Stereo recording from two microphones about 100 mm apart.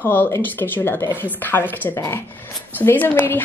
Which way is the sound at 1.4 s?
20° left (ahead or behind).